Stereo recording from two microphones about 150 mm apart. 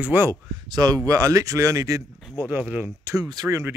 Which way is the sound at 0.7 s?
25° right (ahead or behind).